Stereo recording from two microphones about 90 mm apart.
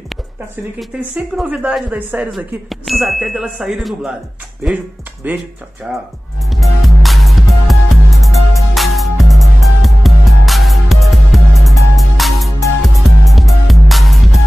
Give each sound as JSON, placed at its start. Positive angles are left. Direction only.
{"t": 1.1, "sound": "speech", "side_deg": -10}
{"t": 2.3, "sound": "speech", "side_deg": 0}
{"t": 5.2, "sound": "speech", "side_deg": -20}
{"t": 6.5, "sound": "music", "side_deg": 0}